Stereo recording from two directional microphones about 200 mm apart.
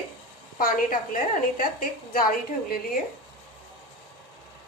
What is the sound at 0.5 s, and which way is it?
A woman's voice, 45° left (ahead or behind).